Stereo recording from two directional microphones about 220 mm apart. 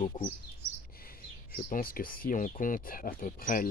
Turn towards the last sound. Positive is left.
turn(degrees=40)  # may be behind; listen again after turning